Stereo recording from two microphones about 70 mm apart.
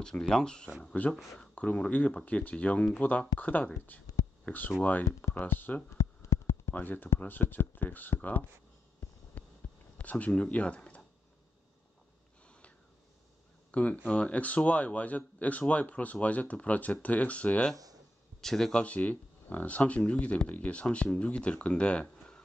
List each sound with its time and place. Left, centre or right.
0.2 s speech: centre
0.8 s a man's voice: left
5.9 s a sound: left
6.7 s a man's voice: left
9.4 s a sound: left
9.9 s speech: centre
13.7 s a man's voice: left
18.4 s speech: centre